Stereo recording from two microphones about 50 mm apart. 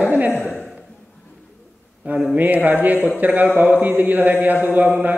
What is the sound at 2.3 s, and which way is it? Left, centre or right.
Mantra, right.